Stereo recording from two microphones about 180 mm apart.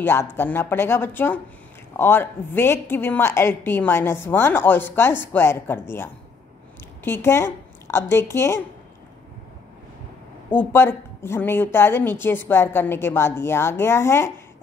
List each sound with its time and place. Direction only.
0.0 s a woman's voice: 15° left (ahead or behind)
7.1 s a woman's voice: 15° left (ahead or behind)
10.5 s a woman's voice: 10° left (ahead or behind)